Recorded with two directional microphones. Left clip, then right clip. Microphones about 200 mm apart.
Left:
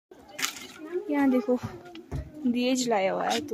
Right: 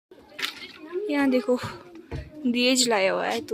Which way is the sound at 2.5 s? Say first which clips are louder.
Right 5 dB; centre (ahead or behind).